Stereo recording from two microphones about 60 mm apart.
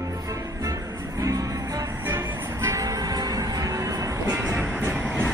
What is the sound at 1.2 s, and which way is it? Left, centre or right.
Music, right.